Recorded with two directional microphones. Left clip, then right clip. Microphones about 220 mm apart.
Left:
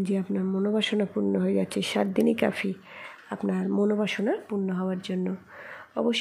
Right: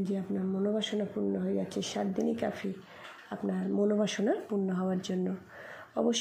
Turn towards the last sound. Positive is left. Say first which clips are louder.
# left 3 dB
turn(degrees=10)  # may be behind; listen again after turning